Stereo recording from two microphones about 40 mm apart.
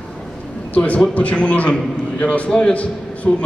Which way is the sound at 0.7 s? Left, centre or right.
Left.